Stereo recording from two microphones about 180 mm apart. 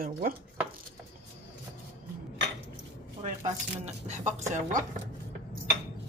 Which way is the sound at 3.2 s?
40° right (ahead or behind).